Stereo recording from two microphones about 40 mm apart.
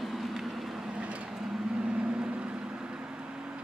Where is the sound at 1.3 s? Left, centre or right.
Centre.